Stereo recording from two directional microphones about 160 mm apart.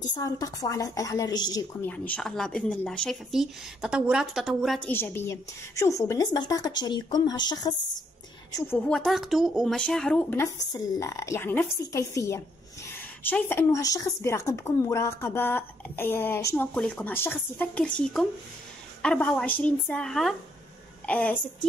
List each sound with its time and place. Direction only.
0.1 s a woman's voice: 20° left (ahead or behind)
1.9 s speech: 10° left (ahead or behind)
4.8 s a woman's voice: 10° left (ahead or behind)
8.5 s a woman's voice: 10° left (ahead or behind)